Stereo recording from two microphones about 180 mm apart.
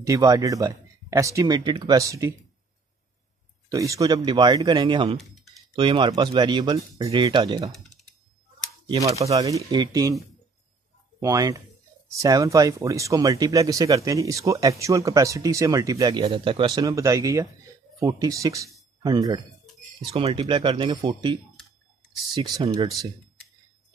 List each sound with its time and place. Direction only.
0.0 s speech: 20° right (ahead or behind)
3.6 s speech: 20° right (ahead or behind)
8.8 s speech: 20° right (ahead or behind)
20.1 s speech: 30° right (ahead or behind)